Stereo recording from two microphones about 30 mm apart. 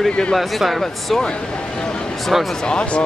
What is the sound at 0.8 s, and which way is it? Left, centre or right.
Speech, centre.